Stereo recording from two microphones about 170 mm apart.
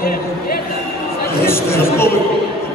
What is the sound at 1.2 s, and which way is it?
Chatter, 15° left (ahead or behind).